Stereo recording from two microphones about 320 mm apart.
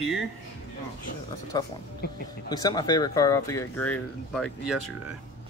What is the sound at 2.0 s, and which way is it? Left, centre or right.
Speech, left.